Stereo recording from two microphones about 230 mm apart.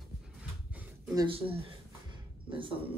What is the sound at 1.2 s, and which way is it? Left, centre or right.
Speech, right.